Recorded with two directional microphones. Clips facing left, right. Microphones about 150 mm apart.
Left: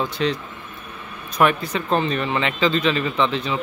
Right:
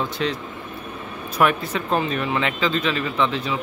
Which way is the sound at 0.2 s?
Centre (ahead or behind).